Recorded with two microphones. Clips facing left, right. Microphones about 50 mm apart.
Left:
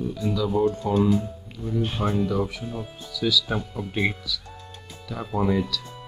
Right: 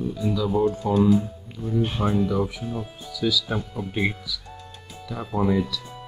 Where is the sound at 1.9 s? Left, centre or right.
Centre.